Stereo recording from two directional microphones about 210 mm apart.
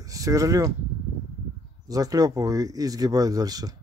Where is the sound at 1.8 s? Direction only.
15° right (ahead or behind).